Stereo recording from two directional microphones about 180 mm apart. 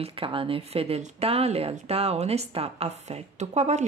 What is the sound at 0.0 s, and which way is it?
Speech, 30° right (ahead or behind).